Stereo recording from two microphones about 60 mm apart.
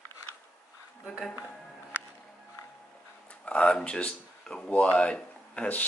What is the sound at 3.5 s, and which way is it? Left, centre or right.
Speech, centre.